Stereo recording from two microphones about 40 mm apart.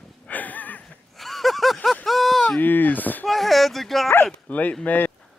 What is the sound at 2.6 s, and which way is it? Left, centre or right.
Speech, left.